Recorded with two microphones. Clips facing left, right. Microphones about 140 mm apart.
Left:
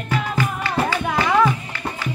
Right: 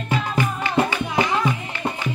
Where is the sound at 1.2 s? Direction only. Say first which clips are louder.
Left 9 dB; 60° left (ahead or behind).